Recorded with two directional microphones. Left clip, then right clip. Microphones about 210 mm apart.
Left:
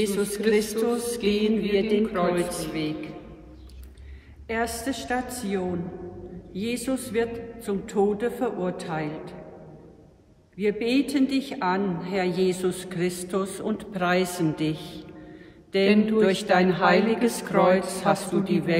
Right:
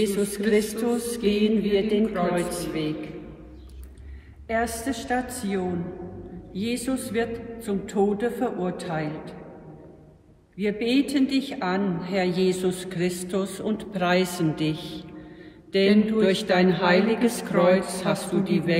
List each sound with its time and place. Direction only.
0.0 s a woman's voice: centre (ahead or behind)
4.5 s a woman's voice: centre (ahead or behind)
10.6 s a woman's voice: centre (ahead or behind)
15.8 s mantra: 30° left (ahead or behind)
16.2 s a woman's voice: centre (ahead or behind)